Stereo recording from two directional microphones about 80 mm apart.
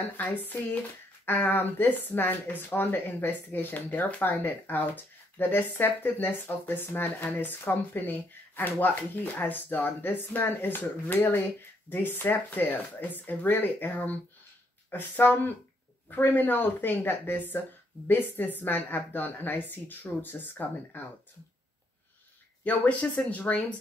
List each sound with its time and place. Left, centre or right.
0.2 s speech: left
22.6 s speech: centre